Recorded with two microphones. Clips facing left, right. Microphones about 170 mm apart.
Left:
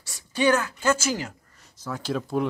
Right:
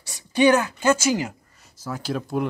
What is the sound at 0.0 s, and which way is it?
A woman's voice, 15° right (ahead or behind).